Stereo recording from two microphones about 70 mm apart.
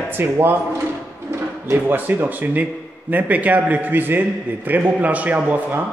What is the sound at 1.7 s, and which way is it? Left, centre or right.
A man's voice, right.